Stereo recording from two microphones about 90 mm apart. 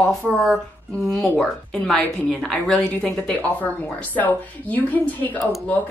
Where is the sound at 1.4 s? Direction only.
5° left (ahead or behind).